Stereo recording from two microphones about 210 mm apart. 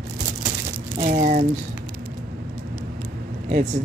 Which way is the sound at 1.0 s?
30° right (ahead or behind).